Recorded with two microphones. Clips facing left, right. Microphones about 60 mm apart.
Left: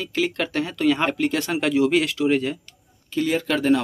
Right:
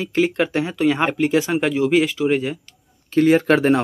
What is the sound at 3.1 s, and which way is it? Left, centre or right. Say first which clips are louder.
Speech: right 8 dB; right.